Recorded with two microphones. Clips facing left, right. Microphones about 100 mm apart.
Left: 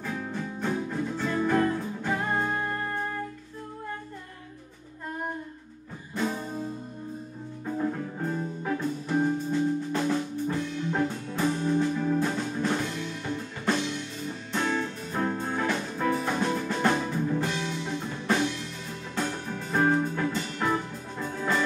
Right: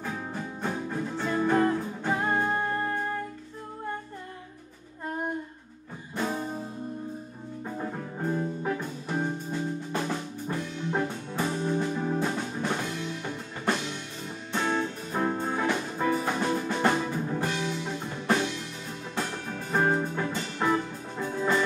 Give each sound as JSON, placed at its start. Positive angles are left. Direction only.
{"t": 0.0, "sound": "music", "side_deg": -20}
{"t": 6.1, "sound": "music", "side_deg": -15}
{"t": 7.6, "sound": "music", "side_deg": -10}
{"t": 12.2, "sound": "music", "side_deg": -10}